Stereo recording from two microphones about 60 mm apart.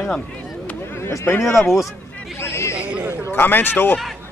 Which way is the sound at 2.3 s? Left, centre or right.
Left.